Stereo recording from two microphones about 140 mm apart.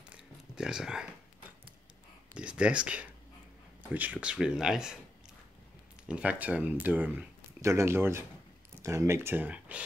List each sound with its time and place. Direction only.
0.1 s a sound: 5° right (ahead or behind)
2.3 s speech: 10° right (ahead or behind)
6.0 s speech: 10° right (ahead or behind)